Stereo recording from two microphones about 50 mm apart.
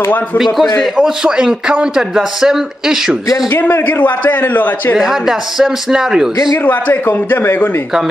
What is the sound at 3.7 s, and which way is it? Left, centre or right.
A man's voice, left.